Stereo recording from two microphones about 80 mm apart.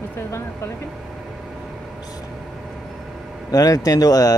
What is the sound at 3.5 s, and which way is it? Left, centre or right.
Speech, left.